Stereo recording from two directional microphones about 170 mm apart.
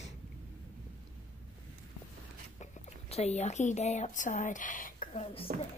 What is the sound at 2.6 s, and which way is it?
Speech, 40° left (ahead or behind).